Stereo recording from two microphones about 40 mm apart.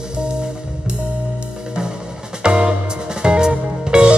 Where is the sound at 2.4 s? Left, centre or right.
Right.